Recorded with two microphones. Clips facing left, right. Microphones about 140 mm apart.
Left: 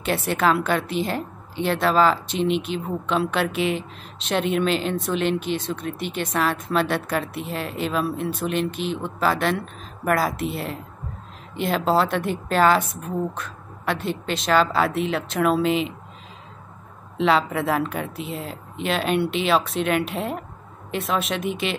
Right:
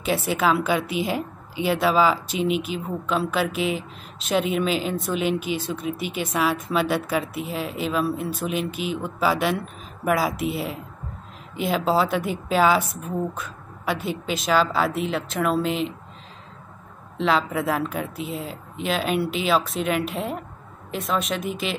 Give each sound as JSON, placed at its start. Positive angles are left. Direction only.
{"t": 0.0, "sound": "a woman's voice", "side_deg": 0}
{"t": 17.2, "sound": "a woman's voice", "side_deg": 0}